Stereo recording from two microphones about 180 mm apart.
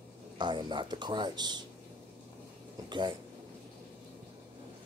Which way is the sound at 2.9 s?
25° right (ahead or behind).